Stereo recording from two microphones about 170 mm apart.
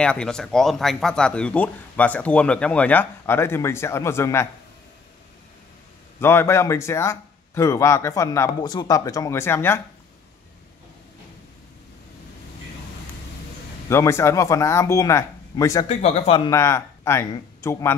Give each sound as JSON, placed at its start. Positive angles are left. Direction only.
{"t": 0.0, "sound": "speech", "side_deg": 5}
{"t": 6.1, "sound": "speech", "side_deg": 15}
{"t": 13.8, "sound": "speech", "side_deg": 15}
{"t": 15.9, "sound": "speech", "side_deg": 40}
{"t": 16.4, "sound": "speech", "side_deg": 20}